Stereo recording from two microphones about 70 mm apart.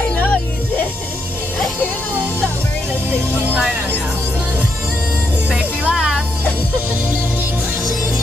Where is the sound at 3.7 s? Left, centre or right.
Right.